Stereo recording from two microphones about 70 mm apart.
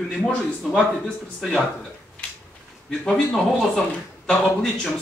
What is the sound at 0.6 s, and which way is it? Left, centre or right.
Speech, centre.